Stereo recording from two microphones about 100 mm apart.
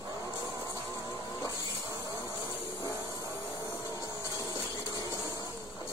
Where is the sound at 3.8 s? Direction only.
35° left (ahead or behind).